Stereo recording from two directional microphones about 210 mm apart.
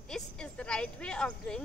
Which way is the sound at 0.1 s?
5° left (ahead or behind).